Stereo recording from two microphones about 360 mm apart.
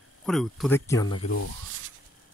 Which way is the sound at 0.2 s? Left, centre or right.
Centre.